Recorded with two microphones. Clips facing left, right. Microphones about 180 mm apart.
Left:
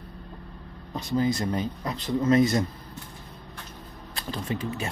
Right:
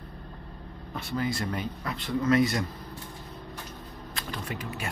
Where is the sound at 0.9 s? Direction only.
25° left (ahead or behind).